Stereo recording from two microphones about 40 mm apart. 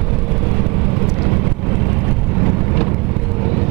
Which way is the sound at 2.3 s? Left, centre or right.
Centre.